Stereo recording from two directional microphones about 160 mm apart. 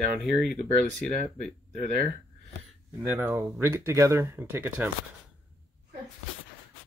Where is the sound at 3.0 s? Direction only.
15° right (ahead or behind).